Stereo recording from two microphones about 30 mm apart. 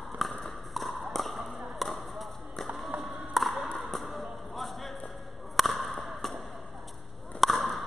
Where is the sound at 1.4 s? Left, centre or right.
Centre.